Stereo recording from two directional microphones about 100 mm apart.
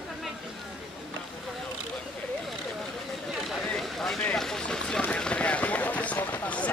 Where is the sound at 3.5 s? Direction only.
Centre (ahead or behind).